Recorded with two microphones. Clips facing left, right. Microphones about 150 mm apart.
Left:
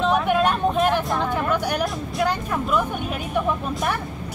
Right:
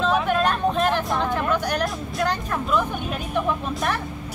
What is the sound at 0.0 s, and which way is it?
Vehicle, 15° left (ahead or behind).